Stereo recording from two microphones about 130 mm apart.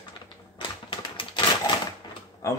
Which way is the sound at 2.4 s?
25° left (ahead or behind).